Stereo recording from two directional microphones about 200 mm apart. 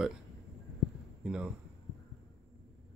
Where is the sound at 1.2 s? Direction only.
5° right (ahead or behind).